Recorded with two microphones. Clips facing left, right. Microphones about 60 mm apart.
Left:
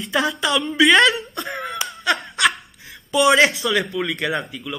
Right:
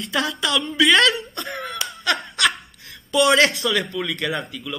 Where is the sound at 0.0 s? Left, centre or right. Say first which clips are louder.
Left 3 dB; centre.